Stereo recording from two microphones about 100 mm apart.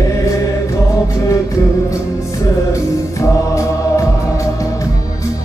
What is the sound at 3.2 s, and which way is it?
Music, 30° left (ahead or behind).